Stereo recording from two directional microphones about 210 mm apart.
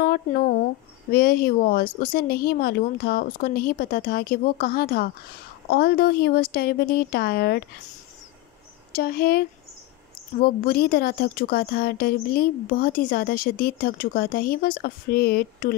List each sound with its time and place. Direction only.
0.0 s a woman's voice: 45° left (ahead or behind)
8.9 s a woman's voice: 45° left (ahead or behind)